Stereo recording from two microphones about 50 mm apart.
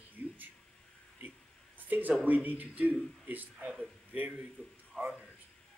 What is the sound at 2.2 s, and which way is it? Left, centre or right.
A man's voice, right.